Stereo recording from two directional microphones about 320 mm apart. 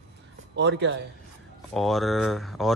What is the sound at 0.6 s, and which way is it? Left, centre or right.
Speech, right.